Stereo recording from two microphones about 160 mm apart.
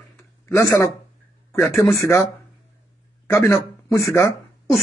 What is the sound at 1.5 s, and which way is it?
Speech, 15° left (ahead or behind).